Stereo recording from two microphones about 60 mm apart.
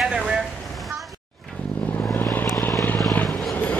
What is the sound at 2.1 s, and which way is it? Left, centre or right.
Vehicle, left.